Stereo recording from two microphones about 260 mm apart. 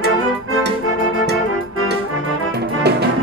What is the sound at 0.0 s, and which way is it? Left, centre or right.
Music, right.